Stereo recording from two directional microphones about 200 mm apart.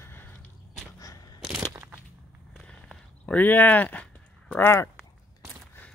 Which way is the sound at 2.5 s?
5° left (ahead or behind).